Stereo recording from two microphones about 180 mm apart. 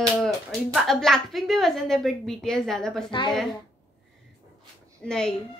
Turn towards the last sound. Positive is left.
turn(degrees=5)  # may be behind; listen again after turning